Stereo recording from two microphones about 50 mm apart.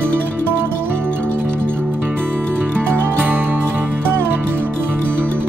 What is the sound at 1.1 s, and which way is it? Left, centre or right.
Music, left.